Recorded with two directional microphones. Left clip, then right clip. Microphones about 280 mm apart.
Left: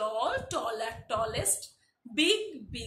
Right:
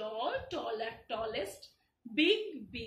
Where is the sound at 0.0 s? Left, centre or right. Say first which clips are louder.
Left 6 dB; centre.